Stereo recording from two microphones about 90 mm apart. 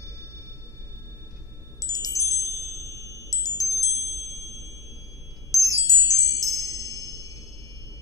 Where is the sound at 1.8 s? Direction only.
40° left (ahead or behind).